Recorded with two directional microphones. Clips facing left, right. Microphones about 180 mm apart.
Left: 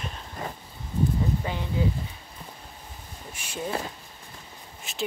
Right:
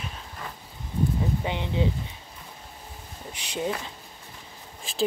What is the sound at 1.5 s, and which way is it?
Speech, 20° right (ahead or behind).